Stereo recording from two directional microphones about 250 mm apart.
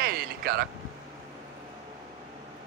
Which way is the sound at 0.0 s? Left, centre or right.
Right.